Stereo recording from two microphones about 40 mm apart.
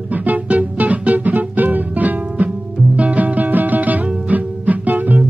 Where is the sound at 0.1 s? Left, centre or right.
Right.